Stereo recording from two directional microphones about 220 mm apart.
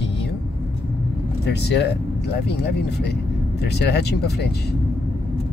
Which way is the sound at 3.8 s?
50° left (ahead or behind).